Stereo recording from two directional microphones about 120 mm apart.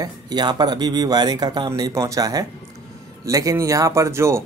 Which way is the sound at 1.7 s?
25° right (ahead or behind).